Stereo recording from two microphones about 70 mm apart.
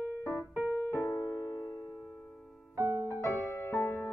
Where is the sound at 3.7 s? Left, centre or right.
Left.